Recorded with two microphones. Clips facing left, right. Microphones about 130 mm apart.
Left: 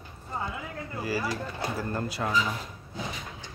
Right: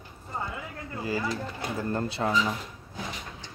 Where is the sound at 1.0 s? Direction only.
20° right (ahead or behind).